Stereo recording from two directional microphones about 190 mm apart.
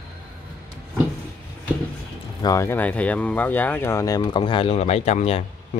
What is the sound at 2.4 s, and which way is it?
Speech, 15° left (ahead or behind).